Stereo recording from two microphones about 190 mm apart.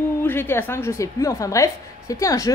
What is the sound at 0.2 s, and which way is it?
Speech, 10° left (ahead or behind).